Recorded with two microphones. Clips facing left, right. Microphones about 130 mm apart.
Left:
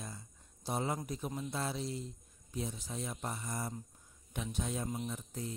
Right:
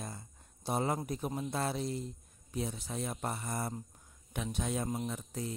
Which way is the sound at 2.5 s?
70° right (ahead or behind).